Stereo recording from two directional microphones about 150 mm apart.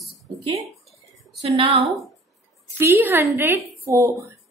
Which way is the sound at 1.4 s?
40° right (ahead or behind).